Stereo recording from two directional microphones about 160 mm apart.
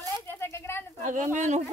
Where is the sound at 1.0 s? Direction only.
50° right (ahead or behind).